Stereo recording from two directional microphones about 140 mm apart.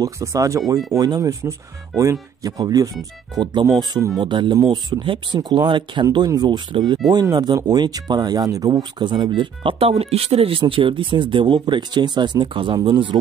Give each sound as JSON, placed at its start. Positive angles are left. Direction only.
{"t": 0.0, "sound": "speech", "side_deg": -20}